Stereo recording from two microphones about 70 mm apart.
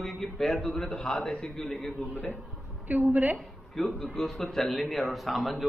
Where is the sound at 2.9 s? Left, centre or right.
Right.